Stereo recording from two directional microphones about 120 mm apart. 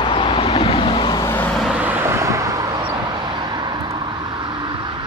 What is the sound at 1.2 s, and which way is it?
Vehicle, 15° left (ahead or behind).